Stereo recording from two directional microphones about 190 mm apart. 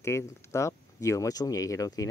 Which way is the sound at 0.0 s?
15° left (ahead or behind).